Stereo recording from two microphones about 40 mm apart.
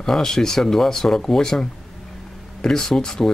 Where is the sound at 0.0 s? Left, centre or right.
Centre.